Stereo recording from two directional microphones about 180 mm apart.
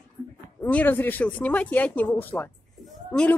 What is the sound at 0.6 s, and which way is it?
Speech, 10° left (ahead or behind).